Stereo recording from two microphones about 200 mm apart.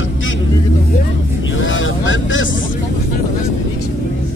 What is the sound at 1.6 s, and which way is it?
Vehicle, 75° left (ahead or behind).